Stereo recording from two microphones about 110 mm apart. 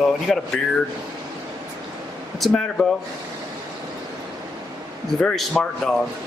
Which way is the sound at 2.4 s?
5° left (ahead or behind).